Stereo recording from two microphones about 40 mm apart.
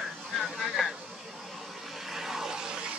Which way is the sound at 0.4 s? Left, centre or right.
Centre.